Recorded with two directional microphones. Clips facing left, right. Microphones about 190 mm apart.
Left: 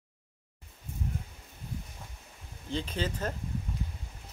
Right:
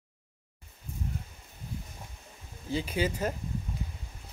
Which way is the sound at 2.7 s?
10° right (ahead or behind).